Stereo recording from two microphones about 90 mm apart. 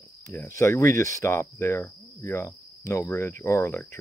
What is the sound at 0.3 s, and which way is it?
Cricket, 30° left (ahead or behind).